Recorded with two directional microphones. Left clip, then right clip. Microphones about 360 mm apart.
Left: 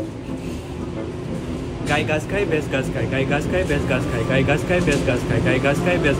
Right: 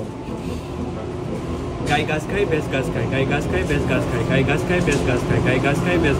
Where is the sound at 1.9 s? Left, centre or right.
Centre.